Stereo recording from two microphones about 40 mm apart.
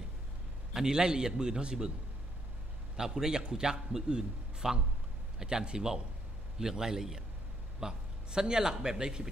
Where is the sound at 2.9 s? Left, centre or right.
Centre.